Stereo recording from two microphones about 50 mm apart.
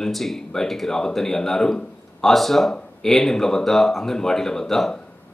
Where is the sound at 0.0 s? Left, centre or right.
Centre.